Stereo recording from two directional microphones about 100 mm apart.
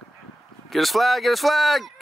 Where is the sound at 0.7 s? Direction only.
Centre (ahead or behind).